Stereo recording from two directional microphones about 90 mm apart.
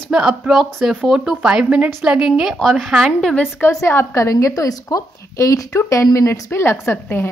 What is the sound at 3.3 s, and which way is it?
A woman's voice, 20° left (ahead or behind).